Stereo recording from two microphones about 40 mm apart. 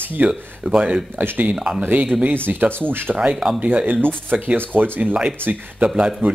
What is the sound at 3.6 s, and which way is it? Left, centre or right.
Speech, right.